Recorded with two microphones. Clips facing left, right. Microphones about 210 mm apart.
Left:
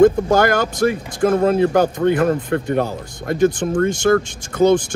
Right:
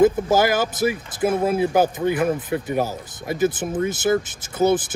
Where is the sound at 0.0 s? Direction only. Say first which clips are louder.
Left 4 dB; 5° right (ahead or behind).